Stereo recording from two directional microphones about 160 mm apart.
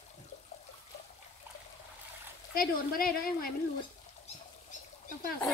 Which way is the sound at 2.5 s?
65° left (ahead or behind).